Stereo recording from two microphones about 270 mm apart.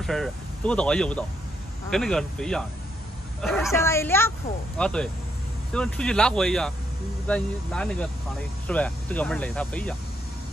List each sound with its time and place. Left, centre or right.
0.0 s speech: centre